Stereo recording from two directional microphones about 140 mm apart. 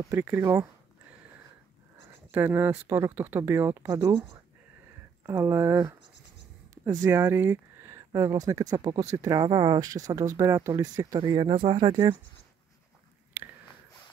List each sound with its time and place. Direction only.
0.0 s speech: 15° right (ahead or behind)
2.3 s speech: 15° right (ahead or behind)
5.2 s speech: 20° right (ahead or behind)
6.7 s a sound: 20° right (ahead or behind)
7.1 s speech: 15° right (ahead or behind); by 11.9 s 35° right (ahead or behind)
13.4 s a sound: 15° right (ahead or behind)